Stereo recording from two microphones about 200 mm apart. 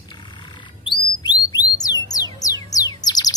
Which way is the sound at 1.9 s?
20° left (ahead or behind).